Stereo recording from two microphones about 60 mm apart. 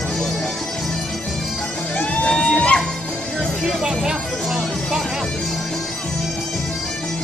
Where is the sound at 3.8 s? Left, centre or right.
Centre.